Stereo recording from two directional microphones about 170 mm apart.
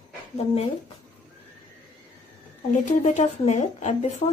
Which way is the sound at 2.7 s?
50° left (ahead or behind).